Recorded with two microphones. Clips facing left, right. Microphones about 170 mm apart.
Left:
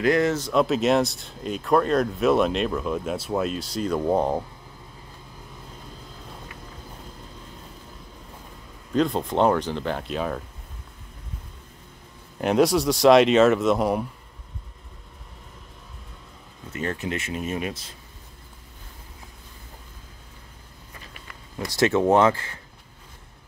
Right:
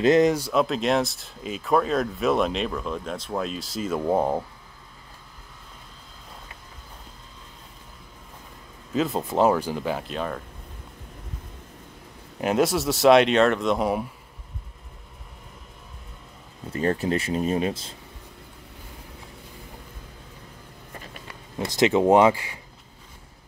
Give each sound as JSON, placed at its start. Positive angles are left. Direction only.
{"t": 0.0, "sound": "speech", "side_deg": -20}
{"t": 0.5, "sound": "speech", "side_deg": 0}
{"t": 8.9, "sound": "speech", "side_deg": -5}
{"t": 12.4, "sound": "speech", "side_deg": 0}
{"t": 16.7, "sound": "speech", "side_deg": -35}
{"t": 21.5, "sound": "speech", "side_deg": -20}